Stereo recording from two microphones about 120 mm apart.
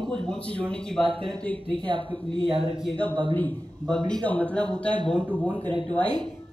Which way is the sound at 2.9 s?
10° left (ahead or behind).